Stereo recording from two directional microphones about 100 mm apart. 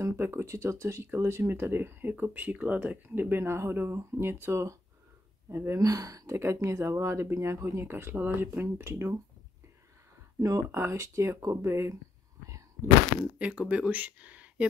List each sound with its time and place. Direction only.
0.0 s speech: 25° right (ahead or behind)
5.8 s speech: 35° right (ahead or behind)
10.4 s speech: 35° right (ahead or behind)
13.2 s speech: 15° right (ahead or behind)